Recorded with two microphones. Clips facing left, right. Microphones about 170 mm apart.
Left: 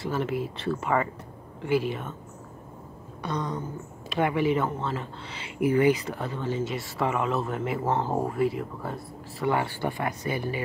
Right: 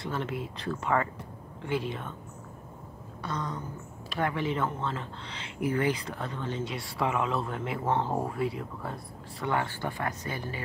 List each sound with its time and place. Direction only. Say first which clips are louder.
0.0 s speech: left 5 dB; 5° left (ahead or behind)
3.2 s a sound: left 4 dB; 15° left (ahead or behind)
4.1 s speech: left 6 dB; 15° left (ahead or behind)